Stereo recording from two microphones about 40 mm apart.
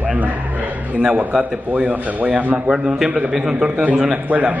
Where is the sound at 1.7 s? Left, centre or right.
Right.